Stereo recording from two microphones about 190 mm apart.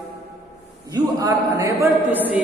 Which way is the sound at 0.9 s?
20° right (ahead or behind).